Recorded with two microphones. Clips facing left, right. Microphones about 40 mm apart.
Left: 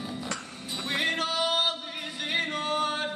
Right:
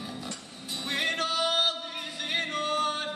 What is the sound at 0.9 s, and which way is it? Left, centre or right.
Music, centre.